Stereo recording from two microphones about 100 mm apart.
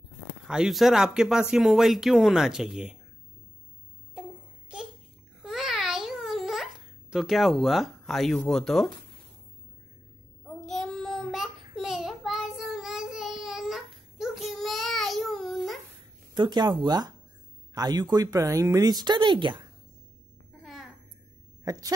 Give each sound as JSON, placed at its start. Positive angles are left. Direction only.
{"t": 0.5, "sound": "speech", "side_deg": -5}
{"t": 5.4, "sound": "babbling", "side_deg": 0}
{"t": 8.4, "sound": "speech", "side_deg": 5}
{"t": 10.4, "sound": "child singing", "side_deg": 10}
{"t": 16.3, "sound": "speech", "side_deg": -45}
{"t": 21.6, "sound": "speech", "side_deg": -35}